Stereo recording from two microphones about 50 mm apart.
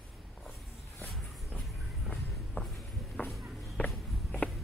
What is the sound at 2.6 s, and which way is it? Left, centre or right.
Walk, left.